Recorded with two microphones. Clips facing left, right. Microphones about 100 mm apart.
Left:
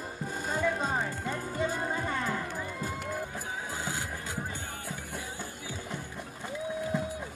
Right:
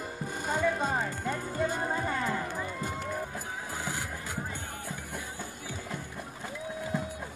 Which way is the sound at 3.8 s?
65° right (ahead or behind).